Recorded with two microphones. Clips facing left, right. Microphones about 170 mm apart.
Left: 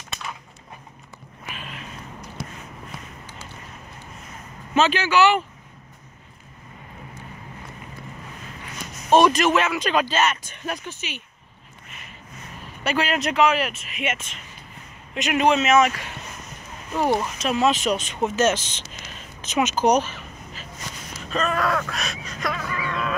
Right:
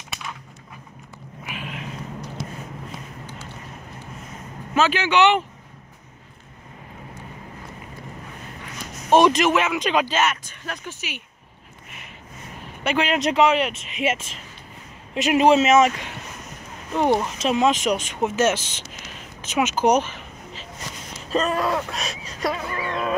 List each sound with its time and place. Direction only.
1.4 s a sound: 15° right (ahead or behind)
2.4 s a sound: 55° left (ahead or behind)
4.8 s speech: 15° right (ahead or behind)
9.1 s speech: 15° right (ahead or behind)
10.5 s speech: 15° left (ahead or behind)
11.0 s speech: 10° right (ahead or behind)
12.8 s speech: 20° right (ahead or behind)
17.4 s speech: 25° right (ahead or behind)
17.6 s speech: 10° right (ahead or behind)
21.3 s a sound: 30° right (ahead or behind)